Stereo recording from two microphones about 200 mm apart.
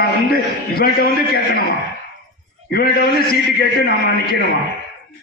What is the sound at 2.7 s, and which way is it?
A man's voice, 50° left (ahead or behind).